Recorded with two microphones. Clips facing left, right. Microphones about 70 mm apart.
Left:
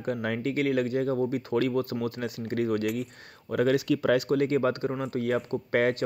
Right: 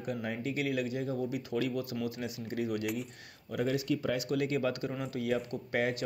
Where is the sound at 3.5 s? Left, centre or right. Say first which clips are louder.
Left 7 dB; left.